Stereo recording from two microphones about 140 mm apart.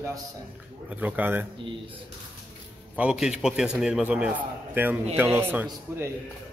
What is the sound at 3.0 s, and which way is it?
A man's voice, 5° right (ahead or behind).